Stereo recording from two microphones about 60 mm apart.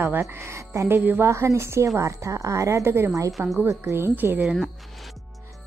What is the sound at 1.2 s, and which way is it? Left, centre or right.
Speech, right.